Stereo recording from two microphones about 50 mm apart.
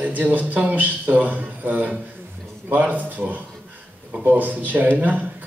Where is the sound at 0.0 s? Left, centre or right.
Right.